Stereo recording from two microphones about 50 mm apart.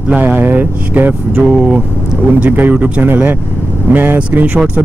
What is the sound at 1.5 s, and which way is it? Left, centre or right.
Speech, centre.